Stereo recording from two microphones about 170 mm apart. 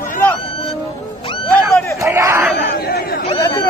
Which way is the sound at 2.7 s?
65° left (ahead or behind).